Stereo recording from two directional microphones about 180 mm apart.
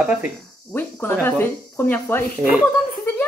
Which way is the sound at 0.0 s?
5° right (ahead or behind).